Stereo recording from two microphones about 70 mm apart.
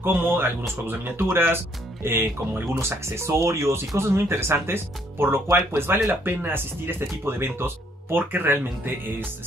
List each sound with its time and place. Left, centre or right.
0.0 s speech: right